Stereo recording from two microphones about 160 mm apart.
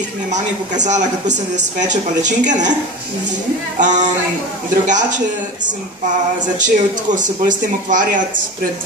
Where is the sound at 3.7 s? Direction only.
50° right (ahead or behind).